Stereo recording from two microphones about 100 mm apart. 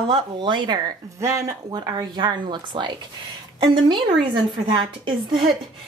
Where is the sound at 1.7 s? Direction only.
45° right (ahead or behind).